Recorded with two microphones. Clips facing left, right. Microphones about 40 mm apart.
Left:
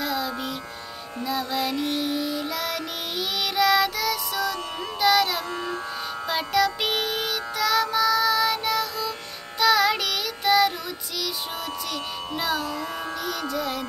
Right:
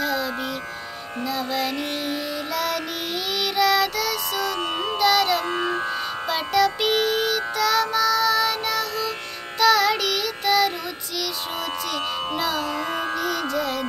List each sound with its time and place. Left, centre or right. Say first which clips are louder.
0.0 s music: right 3 dB; centre
1.2 s speech: right 1 dB; centre
2.0 s music: left 1 dB; centre
3.3 s child singing: right 1 dB; centre
5.0 s music: right 1 dB; centre
5.5 s music: right 6 dB; right
6.2 s music: right 2 dB; centre
9.6 s child singing: right 2 dB; centre
11.9 s speech: right 5 dB; centre
12.6 s music: right 4 dB; right
13.2 s speech: right 4 dB; centre